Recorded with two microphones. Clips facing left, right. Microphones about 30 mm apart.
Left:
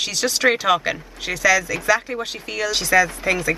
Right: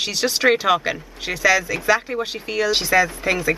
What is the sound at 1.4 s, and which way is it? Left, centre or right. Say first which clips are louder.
Speech: even; centre.